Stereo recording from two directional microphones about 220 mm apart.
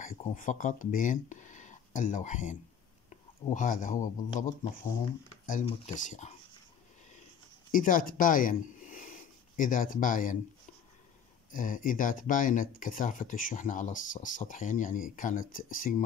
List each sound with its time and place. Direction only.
0.0 s speech: 35° left (ahead or behind)
7.7 s speech: 40° left (ahead or behind)
11.5 s speech: 35° left (ahead or behind)